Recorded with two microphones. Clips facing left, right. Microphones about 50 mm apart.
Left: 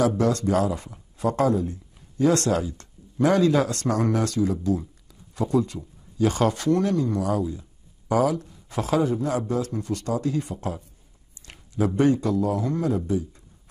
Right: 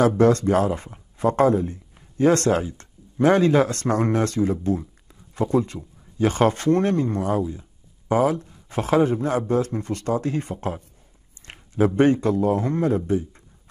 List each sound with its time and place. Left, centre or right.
0.2 s a man's voice: right